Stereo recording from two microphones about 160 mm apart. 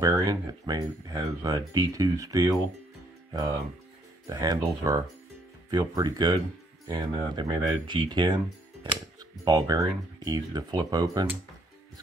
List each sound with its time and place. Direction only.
0.0 s speech: 25° right (ahead or behind)
9.4 s speech: 25° right (ahead or behind)